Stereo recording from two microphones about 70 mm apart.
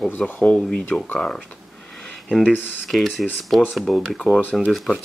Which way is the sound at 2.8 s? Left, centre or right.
Centre.